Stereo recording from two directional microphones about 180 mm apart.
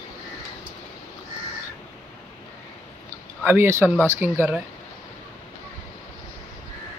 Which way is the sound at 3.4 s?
15° right (ahead or behind).